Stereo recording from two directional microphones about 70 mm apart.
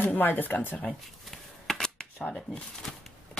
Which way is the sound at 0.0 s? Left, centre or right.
Left.